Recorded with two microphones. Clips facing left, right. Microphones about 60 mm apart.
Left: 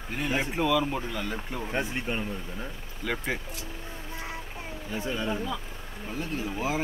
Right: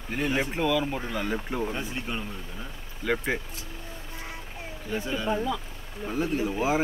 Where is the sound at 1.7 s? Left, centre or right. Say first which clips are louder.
Left 2 dB; left.